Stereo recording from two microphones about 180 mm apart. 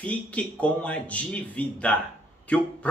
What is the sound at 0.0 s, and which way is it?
Speech, 5° left (ahead or behind).